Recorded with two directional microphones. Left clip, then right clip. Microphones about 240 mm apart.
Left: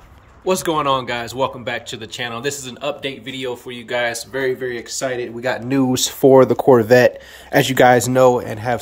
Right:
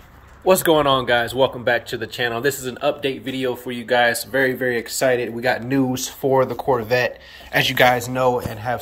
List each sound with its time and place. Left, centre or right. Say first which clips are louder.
0.5 s speech: right 2 dB; centre
5.9 s speech: left 8 dB; left